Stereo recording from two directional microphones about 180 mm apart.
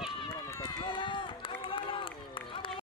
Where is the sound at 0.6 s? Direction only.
25° left (ahead or behind).